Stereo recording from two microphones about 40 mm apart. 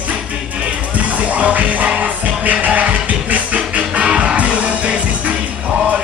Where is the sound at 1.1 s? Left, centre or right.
Right.